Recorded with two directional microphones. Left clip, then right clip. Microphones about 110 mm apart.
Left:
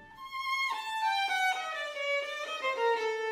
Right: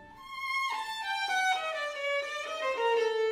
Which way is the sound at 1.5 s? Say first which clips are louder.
Right 2 dB; 25° left (ahead or behind).